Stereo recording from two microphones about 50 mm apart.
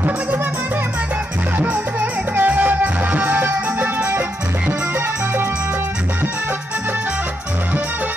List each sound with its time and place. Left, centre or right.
1.6 s music: right